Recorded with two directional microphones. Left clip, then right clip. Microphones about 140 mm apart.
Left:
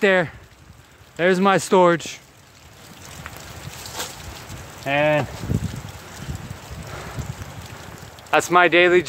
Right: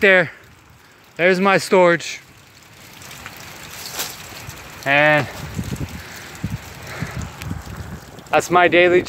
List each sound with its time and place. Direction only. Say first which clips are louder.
0.0 s speech: right 4 dB; 15° left (ahead or behind)
4.8 s speech: right 5 dB; 10° left (ahead or behind)
6.9 s a sound: right 4 dB; 10° left (ahead or behind)
8.3 s speech: right 1 dB; 10° right (ahead or behind)